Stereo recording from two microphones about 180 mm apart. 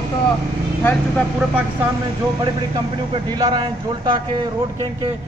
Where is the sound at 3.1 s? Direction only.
20° right (ahead or behind).